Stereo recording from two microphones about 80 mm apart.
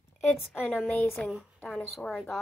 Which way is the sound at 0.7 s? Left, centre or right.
Left.